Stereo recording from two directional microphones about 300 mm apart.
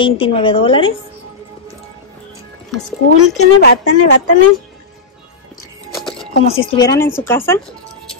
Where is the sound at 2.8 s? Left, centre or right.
Left.